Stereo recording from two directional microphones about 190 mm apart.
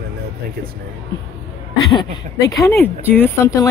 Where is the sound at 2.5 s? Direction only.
15° left (ahead or behind).